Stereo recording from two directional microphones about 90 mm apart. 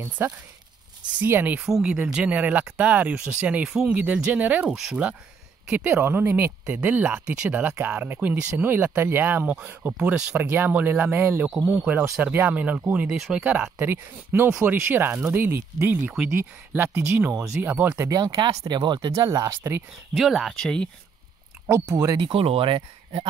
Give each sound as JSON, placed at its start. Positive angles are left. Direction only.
{"t": 0.2, "sound": "speech", "side_deg": -30}
{"t": 1.6, "sound": "speech", "side_deg": -10}
{"t": 4.0, "sound": "speech", "side_deg": -20}
{"t": 4.6, "sound": "speech", "side_deg": -5}
{"t": 11.5, "sound": "speech", "side_deg": -5}
{"t": 11.9, "sound": "speech", "side_deg": -20}
{"t": 13.7, "sound": "speech", "side_deg": -25}
{"t": 17.9, "sound": "speech", "side_deg": -40}
{"t": 18.8, "sound": "speech", "side_deg": -55}
{"t": 20.2, "sound": "speech", "side_deg": 0}
{"t": 21.6, "sound": "speech", "side_deg": -35}
{"t": 22.2, "sound": "speech", "side_deg": -90}